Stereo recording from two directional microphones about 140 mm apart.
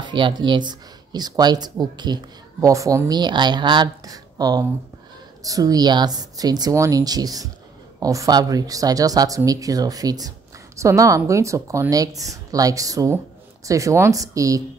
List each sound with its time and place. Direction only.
0.0 s speech: 35° right (ahead or behind)